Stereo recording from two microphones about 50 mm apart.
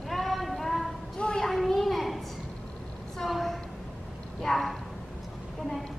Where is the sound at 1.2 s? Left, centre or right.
Centre.